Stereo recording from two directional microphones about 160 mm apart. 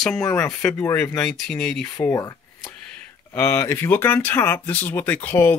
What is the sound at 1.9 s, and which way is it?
Speech, 20° left (ahead or behind).